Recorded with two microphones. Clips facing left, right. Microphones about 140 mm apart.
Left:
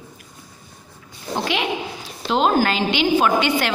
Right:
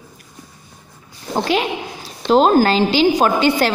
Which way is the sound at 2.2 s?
40° right (ahead or behind).